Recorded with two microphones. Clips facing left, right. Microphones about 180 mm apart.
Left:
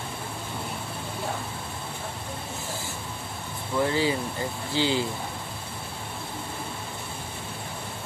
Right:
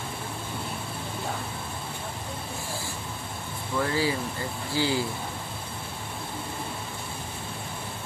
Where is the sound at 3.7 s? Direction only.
20° left (ahead or behind).